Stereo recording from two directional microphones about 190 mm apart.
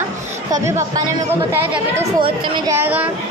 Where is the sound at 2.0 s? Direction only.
25° right (ahead or behind); by 3.1 s 10° right (ahead or behind).